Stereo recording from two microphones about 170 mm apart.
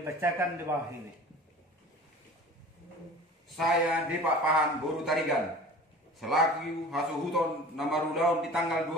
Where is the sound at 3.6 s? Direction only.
Centre (ahead or behind).